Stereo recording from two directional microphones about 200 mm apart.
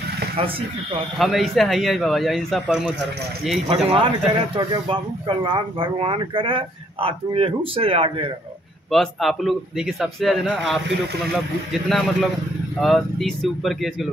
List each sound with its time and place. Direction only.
1.1 s a man's voice: centre (ahead or behind)
3.9 s speech: 25° right (ahead or behind)
8.9 s a man's voice: centre (ahead or behind)
11.9 s a man's voice: 5° left (ahead or behind)